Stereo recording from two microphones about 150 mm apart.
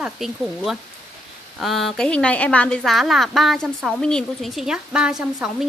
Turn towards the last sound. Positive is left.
turn(degrees=-5)  # may be behind; listen again after turning